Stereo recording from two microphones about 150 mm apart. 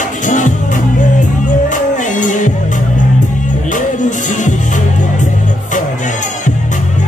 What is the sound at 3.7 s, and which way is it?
Music, 55° left (ahead or behind).